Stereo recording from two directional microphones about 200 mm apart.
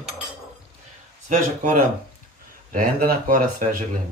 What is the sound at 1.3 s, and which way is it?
Speech, 40° right (ahead or behind).